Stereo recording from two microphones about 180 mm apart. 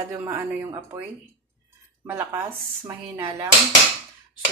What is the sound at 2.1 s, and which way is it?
Speech, 10° right (ahead or behind).